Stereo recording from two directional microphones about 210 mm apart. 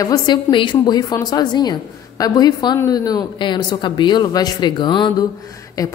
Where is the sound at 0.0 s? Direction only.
20° left (ahead or behind).